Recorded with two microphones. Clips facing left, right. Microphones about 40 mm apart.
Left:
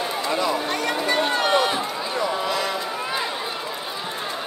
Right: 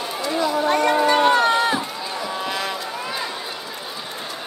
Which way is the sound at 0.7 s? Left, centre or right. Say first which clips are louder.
Right 7 dB; right.